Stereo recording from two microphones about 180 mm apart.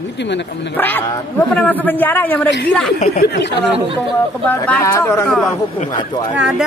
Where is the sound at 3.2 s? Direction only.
65° left (ahead or behind).